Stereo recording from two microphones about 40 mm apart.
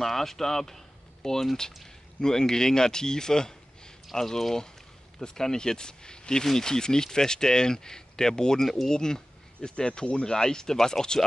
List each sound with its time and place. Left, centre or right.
0.0 s speech: centre